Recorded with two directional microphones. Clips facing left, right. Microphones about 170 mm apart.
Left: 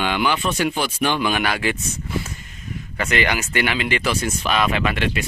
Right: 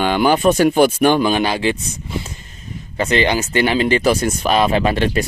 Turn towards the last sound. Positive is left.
turn(degrees=-35)  # may be behind; listen again after turning